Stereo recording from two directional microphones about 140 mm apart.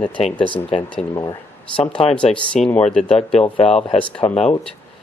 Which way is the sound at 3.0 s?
50° left (ahead or behind).